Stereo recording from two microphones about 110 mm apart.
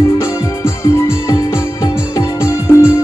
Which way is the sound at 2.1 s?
25° left (ahead or behind).